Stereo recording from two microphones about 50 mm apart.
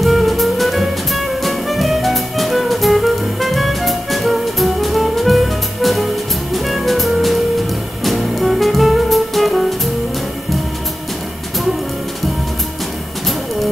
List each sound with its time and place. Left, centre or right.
0.0 s music: centre